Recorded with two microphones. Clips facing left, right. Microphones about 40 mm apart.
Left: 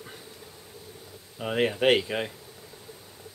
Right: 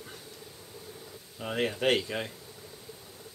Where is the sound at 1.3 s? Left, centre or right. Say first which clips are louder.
Left 5 dB; centre.